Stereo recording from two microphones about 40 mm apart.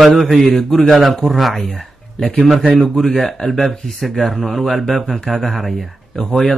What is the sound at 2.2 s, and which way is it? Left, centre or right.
Speech, left.